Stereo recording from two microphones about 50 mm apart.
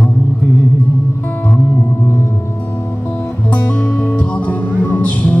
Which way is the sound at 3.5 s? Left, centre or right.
Left.